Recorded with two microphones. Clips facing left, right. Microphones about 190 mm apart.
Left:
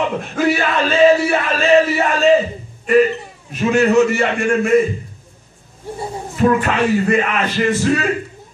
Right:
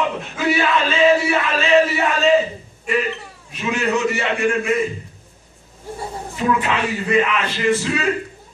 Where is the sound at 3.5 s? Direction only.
50° left (ahead or behind).